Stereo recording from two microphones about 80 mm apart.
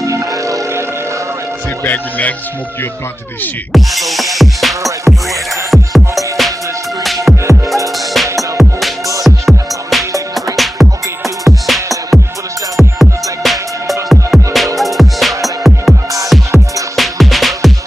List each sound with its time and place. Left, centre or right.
0.0 s music: right
1.9 s speech: left
3.7 s music: centre
7.4 s music: right
8.1 s music: centre